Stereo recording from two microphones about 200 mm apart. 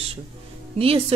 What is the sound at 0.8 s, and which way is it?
Speech, 30° right (ahead or behind).